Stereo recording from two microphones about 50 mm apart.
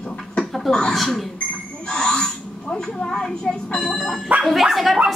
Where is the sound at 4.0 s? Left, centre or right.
Centre.